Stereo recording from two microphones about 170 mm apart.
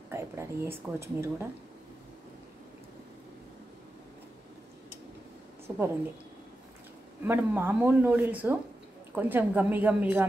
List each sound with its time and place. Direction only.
0.1 s speech: 15° right (ahead or behind)
5.7 s speech: 15° right (ahead or behind)
7.2 s speech: 15° right (ahead or behind)